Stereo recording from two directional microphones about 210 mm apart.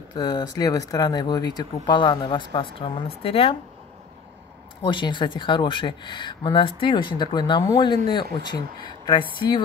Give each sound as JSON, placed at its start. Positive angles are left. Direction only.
{"t": 0.1, "sound": "speech", "side_deg": 20}
{"t": 4.8, "sound": "speech", "side_deg": 20}